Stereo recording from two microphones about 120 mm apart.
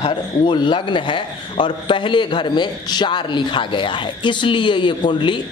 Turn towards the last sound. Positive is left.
turn(degrees=40)  # may be behind; listen again after turning